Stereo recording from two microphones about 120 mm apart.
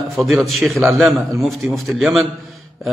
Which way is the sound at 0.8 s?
20° right (ahead or behind).